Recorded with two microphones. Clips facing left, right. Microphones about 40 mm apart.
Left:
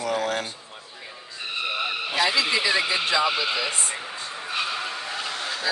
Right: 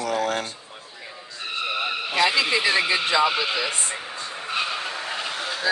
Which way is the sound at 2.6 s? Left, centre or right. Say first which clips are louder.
Right 2 dB; right.